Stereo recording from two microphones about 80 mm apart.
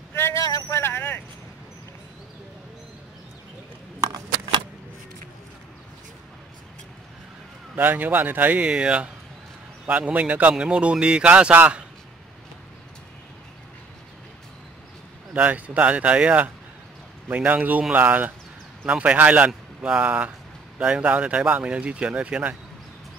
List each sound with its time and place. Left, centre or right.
0.1 s vehicle: left
0.4 s vehicle: left
0.7 s vehicle: left
4.0 s a sound: right
7.7 s speech: right
15.3 s speech: centre